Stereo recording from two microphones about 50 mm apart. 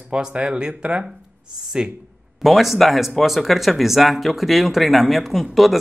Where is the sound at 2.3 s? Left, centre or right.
Centre.